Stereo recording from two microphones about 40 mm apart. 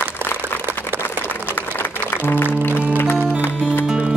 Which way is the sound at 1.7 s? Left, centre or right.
Left.